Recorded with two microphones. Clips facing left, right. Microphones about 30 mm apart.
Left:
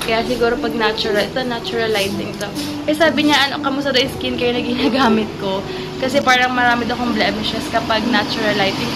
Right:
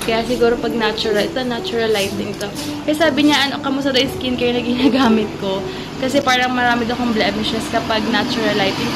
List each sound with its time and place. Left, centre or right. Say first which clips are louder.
0.3 s a woman's voice: right 1 dB; centre
7.3 s speech: right 1 dB; centre
7.7 s speech: left 2 dB; centre